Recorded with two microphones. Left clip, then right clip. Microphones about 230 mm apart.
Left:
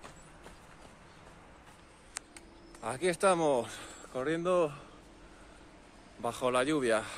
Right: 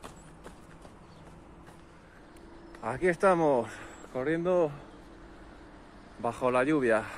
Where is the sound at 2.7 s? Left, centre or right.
Centre.